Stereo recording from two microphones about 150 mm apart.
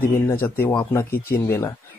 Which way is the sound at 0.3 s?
15° left (ahead or behind).